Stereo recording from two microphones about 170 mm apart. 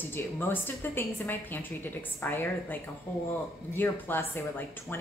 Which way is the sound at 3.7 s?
15° left (ahead or behind).